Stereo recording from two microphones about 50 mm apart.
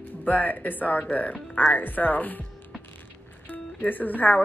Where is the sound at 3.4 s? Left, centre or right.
Left.